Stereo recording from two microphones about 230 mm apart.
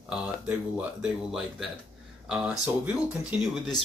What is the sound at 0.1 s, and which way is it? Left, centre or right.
Speech, centre.